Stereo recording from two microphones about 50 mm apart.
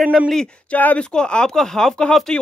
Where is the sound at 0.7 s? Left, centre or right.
Left.